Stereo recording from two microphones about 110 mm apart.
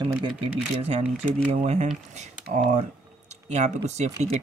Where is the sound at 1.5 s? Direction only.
70° right (ahead or behind).